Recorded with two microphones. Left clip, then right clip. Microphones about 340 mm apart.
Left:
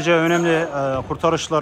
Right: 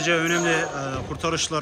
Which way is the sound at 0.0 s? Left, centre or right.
Centre.